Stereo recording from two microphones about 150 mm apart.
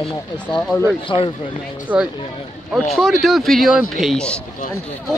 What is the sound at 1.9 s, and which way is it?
Speech, 10° right (ahead or behind).